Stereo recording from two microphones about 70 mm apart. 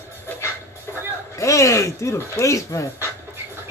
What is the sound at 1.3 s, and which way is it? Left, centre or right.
A man's voice, left.